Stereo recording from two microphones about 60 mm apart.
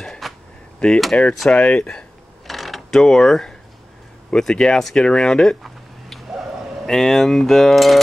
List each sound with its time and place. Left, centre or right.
0.2 s a sound: centre
0.7 s speech: centre
1.7 s speech: centre
2.4 s mechanisms: centre
4.3 s speech: centre
5.6 s a sound: centre
6.9 s speech: centre